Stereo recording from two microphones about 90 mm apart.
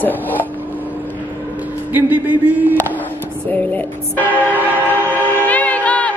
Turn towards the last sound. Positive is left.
turn(degrees=15)  # may be behind; listen again after turning